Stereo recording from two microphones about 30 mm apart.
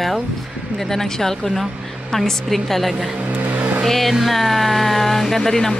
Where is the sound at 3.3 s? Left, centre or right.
Right.